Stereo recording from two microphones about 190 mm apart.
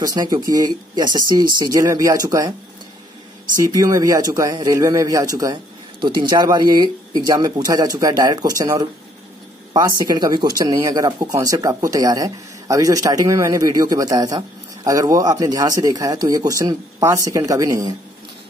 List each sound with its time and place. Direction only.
0.0 s speech: 20° right (ahead or behind)
3.6 s speech: 15° right (ahead or behind)